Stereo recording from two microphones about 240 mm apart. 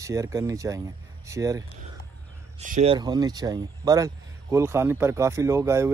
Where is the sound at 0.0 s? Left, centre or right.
Centre.